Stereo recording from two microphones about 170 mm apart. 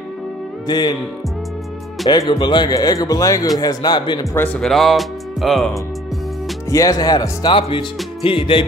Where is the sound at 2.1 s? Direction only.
25° left (ahead or behind).